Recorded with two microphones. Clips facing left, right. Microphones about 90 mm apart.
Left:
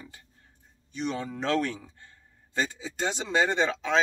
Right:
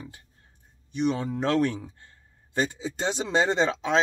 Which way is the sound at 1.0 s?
20° right (ahead or behind).